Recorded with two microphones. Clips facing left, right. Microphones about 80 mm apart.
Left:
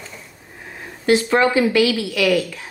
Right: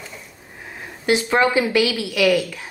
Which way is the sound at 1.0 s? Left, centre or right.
Centre.